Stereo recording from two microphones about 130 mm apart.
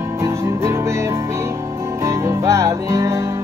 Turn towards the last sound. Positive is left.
turn(degrees=-20)  # may be behind; listen again after turning